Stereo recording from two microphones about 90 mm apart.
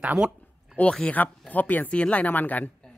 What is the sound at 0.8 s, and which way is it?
A woman's voice, 10° left (ahead or behind).